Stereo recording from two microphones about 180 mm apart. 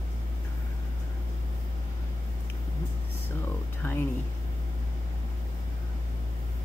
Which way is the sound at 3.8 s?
15° left (ahead or behind).